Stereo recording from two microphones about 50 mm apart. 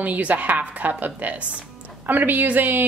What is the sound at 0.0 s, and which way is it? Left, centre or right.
A woman's voice, right.